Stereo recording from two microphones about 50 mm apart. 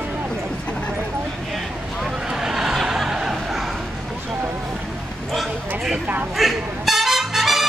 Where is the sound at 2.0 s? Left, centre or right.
Centre.